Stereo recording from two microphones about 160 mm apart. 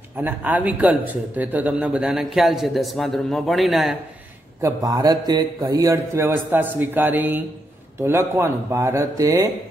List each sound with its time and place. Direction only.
0.2 s speech: 10° right (ahead or behind)
4.6 s a man's voice: 20° right (ahead or behind)